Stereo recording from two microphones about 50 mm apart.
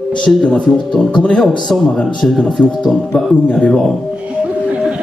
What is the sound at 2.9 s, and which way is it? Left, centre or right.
Speech, centre.